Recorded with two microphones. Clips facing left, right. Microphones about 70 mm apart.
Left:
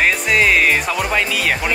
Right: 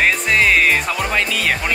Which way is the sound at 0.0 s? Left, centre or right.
Centre.